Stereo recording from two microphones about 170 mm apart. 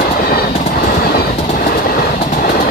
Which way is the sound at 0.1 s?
65° left (ahead or behind).